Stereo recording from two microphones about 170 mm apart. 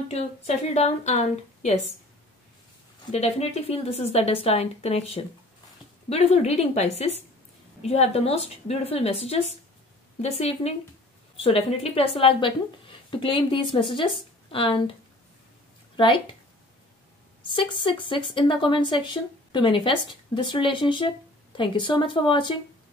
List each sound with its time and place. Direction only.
0.1 s speech: 40° left (ahead or behind)
3.1 s speech: 40° left (ahead or behind)
17.5 s speech: 30° left (ahead or behind)